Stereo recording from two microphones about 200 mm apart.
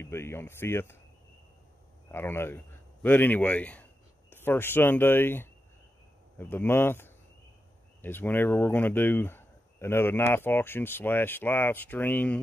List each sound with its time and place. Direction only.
0.0 s speech: 15° left (ahead or behind)
2.0 s speech: 10° left (ahead or behind)